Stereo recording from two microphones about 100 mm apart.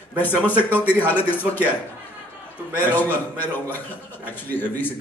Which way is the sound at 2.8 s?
20° left (ahead or behind).